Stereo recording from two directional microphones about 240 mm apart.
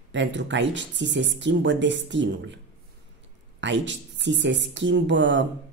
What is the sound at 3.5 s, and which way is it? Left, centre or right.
Speech, right.